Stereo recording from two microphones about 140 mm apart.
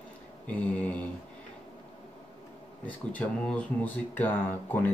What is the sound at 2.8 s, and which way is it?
Speech, 10° left (ahead or behind).